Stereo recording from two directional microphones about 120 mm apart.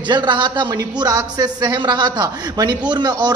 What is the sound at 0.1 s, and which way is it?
A man's voice, 40° right (ahead or behind).